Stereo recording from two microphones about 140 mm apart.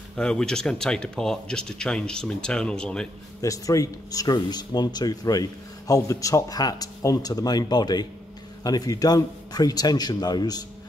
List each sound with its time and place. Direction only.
0.1 s speech: 5° left (ahead or behind)
3.3 s speech: 25° left (ahead or behind)